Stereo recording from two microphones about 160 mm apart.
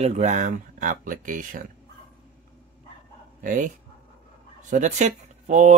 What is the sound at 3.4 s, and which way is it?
Speech, 55° right (ahead or behind).